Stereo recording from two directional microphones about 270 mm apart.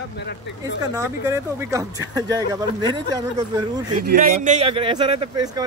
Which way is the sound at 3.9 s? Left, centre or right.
Right.